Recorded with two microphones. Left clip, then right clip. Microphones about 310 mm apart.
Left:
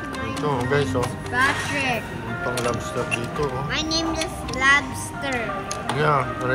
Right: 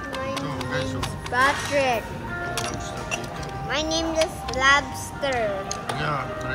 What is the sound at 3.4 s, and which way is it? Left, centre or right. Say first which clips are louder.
Speech: left 2 dB; right.